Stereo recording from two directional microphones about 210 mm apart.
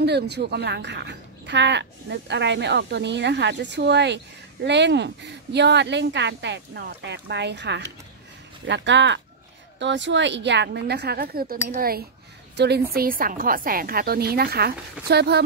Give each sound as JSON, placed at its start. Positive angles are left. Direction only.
{"t": 0.0, "sound": "a woman's voice", "side_deg": -50}